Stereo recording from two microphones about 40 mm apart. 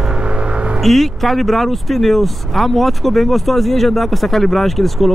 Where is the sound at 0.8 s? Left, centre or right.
Centre.